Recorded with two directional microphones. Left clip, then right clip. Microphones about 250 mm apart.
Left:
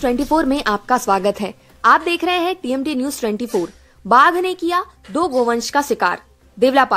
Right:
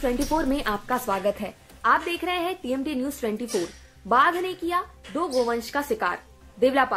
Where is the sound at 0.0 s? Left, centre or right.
Left.